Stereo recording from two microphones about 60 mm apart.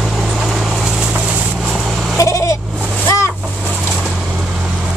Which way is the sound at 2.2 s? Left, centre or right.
Left.